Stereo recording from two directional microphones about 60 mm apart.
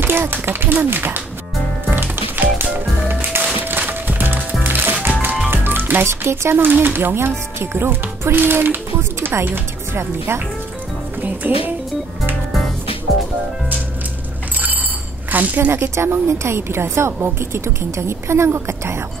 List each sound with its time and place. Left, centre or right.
0.0 s speech: right
1.9 s music: right
5.5 s speech: right
9.2 s music: right
9.9 s a woman's voice: right
11.1 s speech: right
15.3 s a woman's voice: right
16.0 s a woman's voice: right